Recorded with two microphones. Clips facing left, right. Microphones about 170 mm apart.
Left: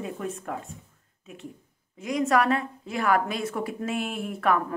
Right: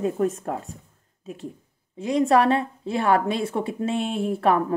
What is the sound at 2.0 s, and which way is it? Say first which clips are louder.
A woman's voice: right 4 dB; 30° right (ahead or behind).